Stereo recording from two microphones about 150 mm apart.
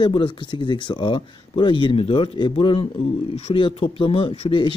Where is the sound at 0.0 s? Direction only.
35° left (ahead or behind).